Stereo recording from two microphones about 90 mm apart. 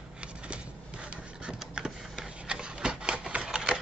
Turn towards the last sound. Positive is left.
turn(degrees=-10)  # may be behind; listen again after turning